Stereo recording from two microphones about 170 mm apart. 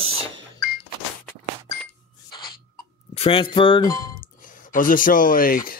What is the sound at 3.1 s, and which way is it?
Speech, 35° left (ahead or behind).